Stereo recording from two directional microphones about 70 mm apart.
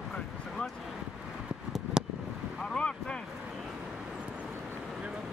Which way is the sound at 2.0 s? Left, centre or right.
Centre.